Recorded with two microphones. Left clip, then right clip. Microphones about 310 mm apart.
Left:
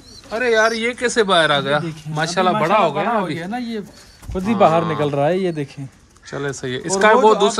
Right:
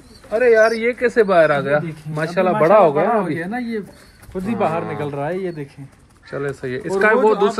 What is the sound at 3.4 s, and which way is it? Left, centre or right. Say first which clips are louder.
Speech: right 1 dB; centre.